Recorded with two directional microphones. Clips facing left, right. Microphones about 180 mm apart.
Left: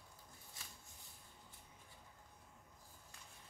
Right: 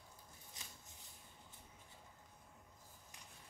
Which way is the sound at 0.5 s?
20° right (ahead or behind).